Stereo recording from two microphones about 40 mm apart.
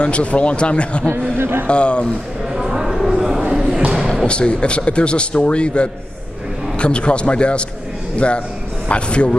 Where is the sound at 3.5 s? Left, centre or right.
Centre.